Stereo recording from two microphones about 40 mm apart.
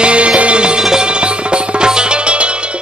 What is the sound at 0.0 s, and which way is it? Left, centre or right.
Music, right.